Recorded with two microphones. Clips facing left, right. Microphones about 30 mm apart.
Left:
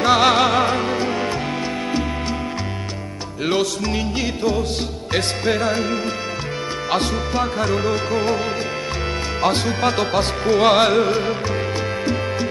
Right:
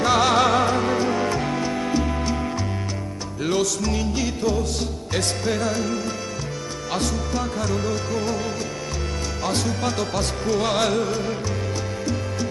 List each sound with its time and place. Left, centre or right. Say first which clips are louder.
0.0 s music: left 3 dB; left
3.4 s music: left 2 dB; left
9.4 s music: left 6 dB; left